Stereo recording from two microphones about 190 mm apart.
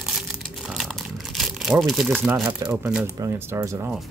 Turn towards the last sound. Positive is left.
turn(degrees=-15)  # may be behind; listen again after turning